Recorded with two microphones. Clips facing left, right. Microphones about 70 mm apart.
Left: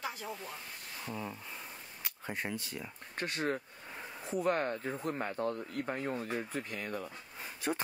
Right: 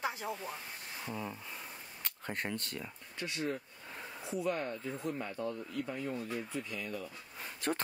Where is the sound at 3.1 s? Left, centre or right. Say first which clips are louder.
Left 3 dB; left.